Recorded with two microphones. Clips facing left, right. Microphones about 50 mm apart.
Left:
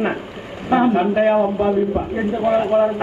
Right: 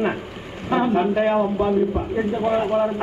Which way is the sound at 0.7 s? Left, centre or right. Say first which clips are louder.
Left 3 dB; left.